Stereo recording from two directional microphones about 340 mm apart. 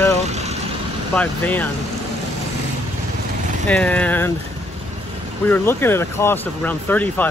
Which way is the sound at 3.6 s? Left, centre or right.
Centre.